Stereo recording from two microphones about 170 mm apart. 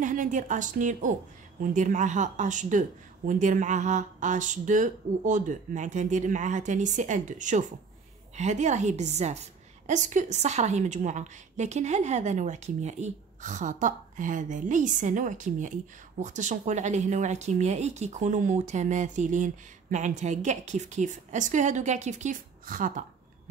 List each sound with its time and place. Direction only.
0.0 s a woman's voice: 50° right (ahead or behind)